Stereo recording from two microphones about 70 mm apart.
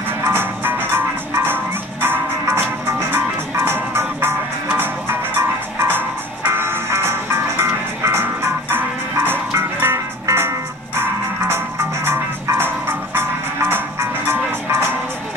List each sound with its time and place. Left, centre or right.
0.2 s music: right